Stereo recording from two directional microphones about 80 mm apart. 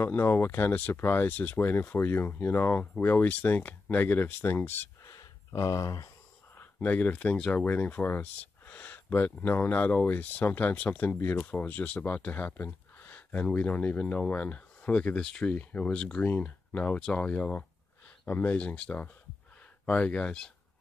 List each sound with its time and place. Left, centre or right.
0.0 s speech: left
5.0 s a sound: left
6.5 s speech: left